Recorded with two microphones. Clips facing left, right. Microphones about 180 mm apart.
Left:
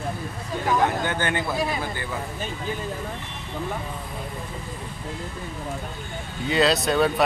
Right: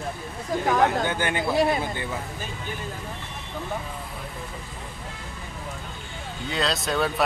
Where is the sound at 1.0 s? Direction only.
15° right (ahead or behind).